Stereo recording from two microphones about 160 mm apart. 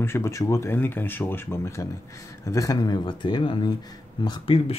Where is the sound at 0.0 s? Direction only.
15° left (ahead or behind).